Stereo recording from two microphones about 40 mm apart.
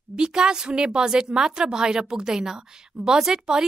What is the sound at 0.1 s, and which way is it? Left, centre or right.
A woman's voice, right.